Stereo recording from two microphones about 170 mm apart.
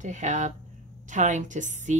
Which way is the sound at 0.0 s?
45° right (ahead or behind).